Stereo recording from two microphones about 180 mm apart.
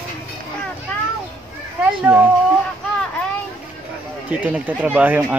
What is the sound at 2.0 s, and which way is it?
Speech, 10° right (ahead or behind).